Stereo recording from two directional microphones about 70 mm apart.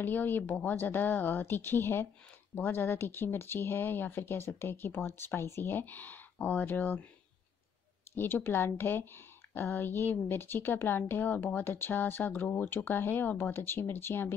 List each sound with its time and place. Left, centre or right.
0.0 s speech: left
8.2 s speech: left